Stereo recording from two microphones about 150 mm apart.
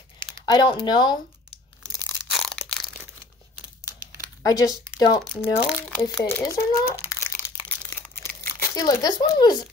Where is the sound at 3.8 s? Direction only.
25° left (ahead or behind).